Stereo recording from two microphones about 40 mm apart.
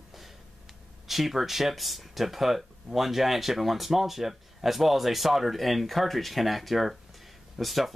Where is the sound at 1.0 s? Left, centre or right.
Centre.